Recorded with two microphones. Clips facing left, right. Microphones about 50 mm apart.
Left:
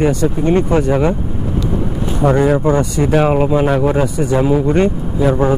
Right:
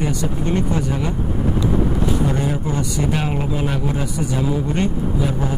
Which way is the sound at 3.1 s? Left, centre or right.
Left.